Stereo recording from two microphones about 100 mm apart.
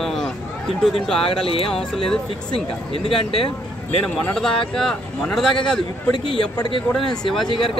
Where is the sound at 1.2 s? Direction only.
70° left (ahead or behind).